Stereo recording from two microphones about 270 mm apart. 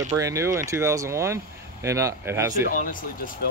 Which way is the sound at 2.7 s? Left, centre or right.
Left.